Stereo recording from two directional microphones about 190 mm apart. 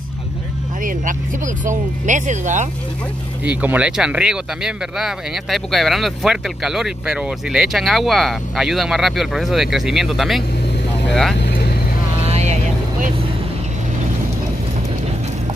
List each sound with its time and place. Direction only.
0.8 s speech: 45° right (ahead or behind)
3.4 s speech: 5° right (ahead or behind)
11.3 s vehicle: 65° left (ahead or behind)
12.3 s vehicle: 35° right (ahead or behind)